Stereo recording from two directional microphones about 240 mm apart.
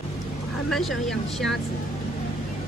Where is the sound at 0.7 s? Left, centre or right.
Centre.